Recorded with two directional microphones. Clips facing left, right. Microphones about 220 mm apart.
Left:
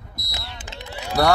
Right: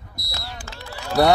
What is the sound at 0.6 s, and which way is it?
Run, 20° left (ahead or behind).